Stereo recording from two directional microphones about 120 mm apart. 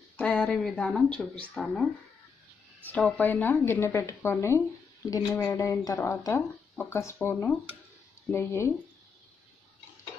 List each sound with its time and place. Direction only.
0.2 s a woman's voice: 5° left (ahead or behind)
3.0 s a woman's voice: 15° left (ahead or behind); by 5.9 s 35° left (ahead or behind)
5.9 s a woman's voice: 20° left (ahead or behind)